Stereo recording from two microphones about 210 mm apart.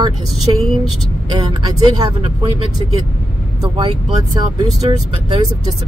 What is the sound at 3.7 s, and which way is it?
Speech, 20° right (ahead or behind).